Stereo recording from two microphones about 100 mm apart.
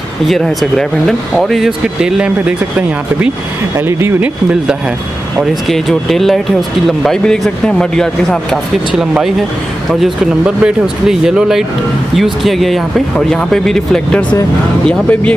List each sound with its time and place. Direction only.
0.3 s speech: centre (ahead or behind)
3.7 s speech: 25° right (ahead or behind)
5.4 s speech: centre (ahead or behind)
8.9 s speech: 5° right (ahead or behind); by 15.3 s 10° left (ahead or behind)